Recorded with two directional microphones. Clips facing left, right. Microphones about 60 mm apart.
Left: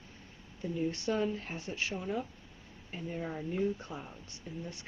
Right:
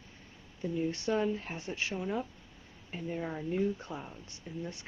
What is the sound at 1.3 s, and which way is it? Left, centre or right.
Speech, right.